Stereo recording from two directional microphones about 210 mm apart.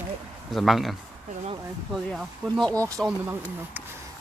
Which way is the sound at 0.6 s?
Centre (ahead or behind).